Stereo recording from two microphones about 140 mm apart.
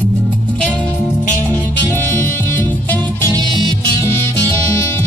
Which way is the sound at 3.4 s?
35° right (ahead or behind).